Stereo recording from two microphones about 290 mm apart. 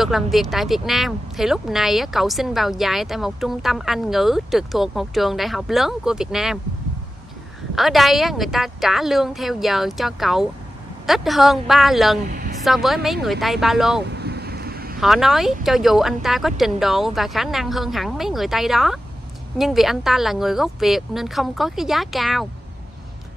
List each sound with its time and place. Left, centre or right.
0.0 s speech: centre
7.7 s speech: centre
12.3 s a sound: right
12.5 s speech: centre
14.1 s vehicle: right
15.0 s speech: centre